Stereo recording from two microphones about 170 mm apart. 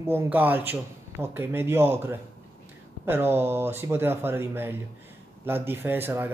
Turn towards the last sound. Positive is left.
turn(degrees=-10)  # may be behind; listen again after turning